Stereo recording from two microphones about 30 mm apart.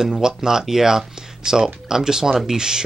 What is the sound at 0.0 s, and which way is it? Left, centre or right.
Speech, right.